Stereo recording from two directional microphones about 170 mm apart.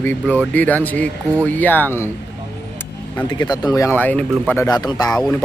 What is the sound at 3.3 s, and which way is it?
Speech, 25° left (ahead or behind).